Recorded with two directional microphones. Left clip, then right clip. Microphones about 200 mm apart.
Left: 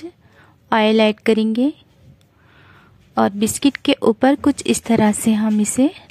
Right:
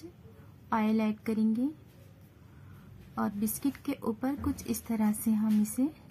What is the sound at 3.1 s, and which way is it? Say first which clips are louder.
Speech: left 17 dB; 35° left (ahead or behind).